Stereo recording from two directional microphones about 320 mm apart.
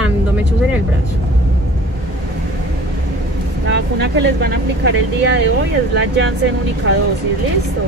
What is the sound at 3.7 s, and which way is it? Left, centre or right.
Speech, right.